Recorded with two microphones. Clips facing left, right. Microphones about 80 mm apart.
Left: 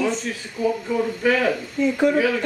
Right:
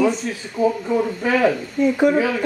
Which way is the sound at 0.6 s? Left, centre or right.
Right.